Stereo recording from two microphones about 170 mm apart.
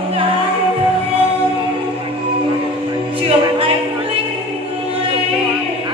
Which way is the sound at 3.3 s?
35° right (ahead or behind).